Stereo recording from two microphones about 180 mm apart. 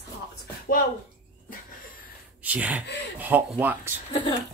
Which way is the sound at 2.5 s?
10° right (ahead or behind).